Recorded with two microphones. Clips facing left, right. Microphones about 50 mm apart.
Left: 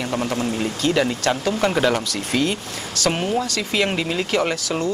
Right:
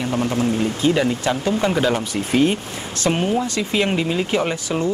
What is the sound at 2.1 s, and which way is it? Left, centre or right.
Speech, right.